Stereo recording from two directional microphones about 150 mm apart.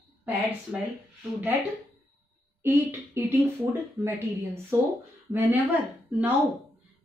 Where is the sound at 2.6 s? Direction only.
15° right (ahead or behind).